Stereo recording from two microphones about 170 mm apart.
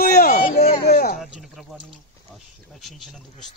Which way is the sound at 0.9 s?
50° left (ahead or behind).